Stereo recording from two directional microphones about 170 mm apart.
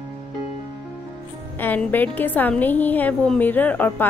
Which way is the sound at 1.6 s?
10° left (ahead or behind).